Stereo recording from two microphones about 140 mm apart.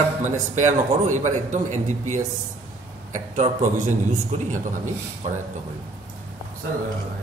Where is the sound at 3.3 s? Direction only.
55° right (ahead or behind).